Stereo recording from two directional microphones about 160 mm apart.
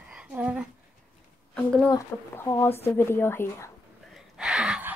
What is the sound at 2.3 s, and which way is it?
A woman's voice, 15° left (ahead or behind).